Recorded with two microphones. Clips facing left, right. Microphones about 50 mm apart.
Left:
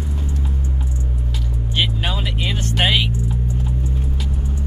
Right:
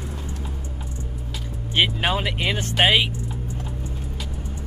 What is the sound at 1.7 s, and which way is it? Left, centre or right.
Vehicle, right.